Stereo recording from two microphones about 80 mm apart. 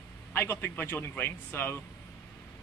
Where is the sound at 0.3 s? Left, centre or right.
Left.